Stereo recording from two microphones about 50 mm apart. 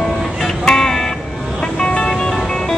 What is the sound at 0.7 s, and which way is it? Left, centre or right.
Music, centre.